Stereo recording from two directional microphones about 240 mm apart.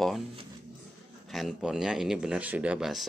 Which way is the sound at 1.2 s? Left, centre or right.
Centre.